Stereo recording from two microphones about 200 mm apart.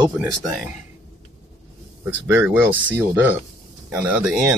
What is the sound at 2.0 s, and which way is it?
Speech, 10° right (ahead or behind).